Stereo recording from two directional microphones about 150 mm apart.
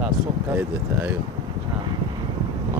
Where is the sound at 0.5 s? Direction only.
15° right (ahead or behind).